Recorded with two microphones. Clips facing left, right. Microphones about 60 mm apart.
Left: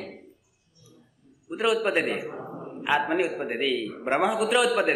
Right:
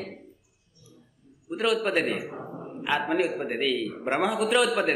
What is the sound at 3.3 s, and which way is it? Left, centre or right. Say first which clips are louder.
A man's voice: even; centre.